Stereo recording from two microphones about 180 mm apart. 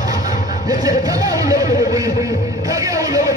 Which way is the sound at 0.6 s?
20° right (ahead or behind).